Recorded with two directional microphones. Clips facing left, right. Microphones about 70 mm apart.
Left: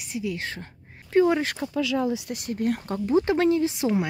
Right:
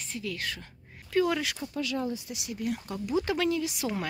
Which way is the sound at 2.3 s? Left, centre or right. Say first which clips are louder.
Left 7 dB; left.